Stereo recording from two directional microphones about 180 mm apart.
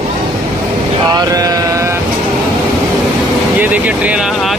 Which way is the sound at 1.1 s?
20° right (ahead or behind).